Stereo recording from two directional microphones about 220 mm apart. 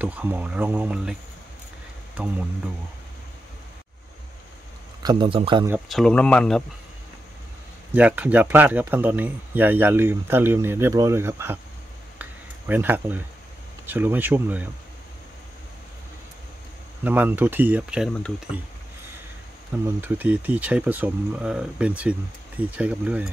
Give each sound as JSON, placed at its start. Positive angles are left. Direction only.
{"t": 0.0, "sound": "speech", "side_deg": -5}
{"t": 2.1, "sound": "speech", "side_deg": -5}
{"t": 5.0, "sound": "a man's voice", "side_deg": -25}
{"t": 5.7, "sound": "speech", "side_deg": 0}
{"t": 7.9, "sound": "speech", "side_deg": -5}
{"t": 12.2, "sound": "a sound", "side_deg": -10}
{"t": 13.8, "sound": "speech", "side_deg": -10}
{"t": 17.0, "sound": "speech", "side_deg": -5}
{"t": 20.0, "sound": "speech", "side_deg": -5}